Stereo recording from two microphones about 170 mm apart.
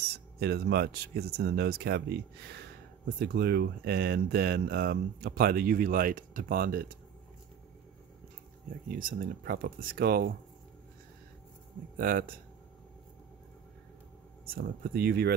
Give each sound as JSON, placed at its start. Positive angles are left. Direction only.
{"t": 0.1, "sound": "speech", "side_deg": -70}
{"t": 8.9, "sound": "speech", "side_deg": -60}
{"t": 12.0, "sound": "speech", "side_deg": -55}
{"t": 14.4, "sound": "speech", "side_deg": -60}